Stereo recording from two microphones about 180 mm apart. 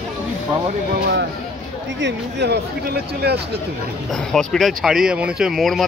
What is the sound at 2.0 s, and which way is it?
Speech, 70° right (ahead or behind).